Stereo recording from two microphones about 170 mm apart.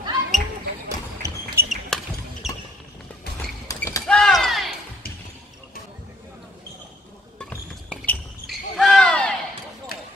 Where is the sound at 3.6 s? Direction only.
20° left (ahead or behind).